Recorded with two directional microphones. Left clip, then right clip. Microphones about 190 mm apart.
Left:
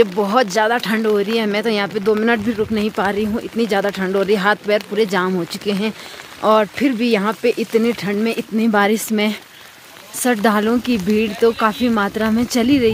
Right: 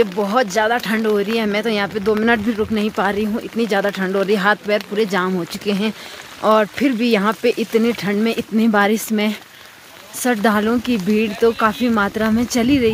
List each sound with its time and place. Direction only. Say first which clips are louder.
0.0 s speech: left 2 dB; 15° left (ahead or behind)
2.2 s speech: even; centre (ahead or behind)
8.7 s speech: left 1 dB; 5° left (ahead or behind)